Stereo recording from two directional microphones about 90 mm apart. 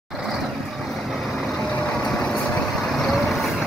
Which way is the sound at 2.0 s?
10° left (ahead or behind).